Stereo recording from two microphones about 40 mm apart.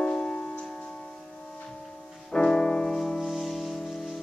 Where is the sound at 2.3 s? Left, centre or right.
Left.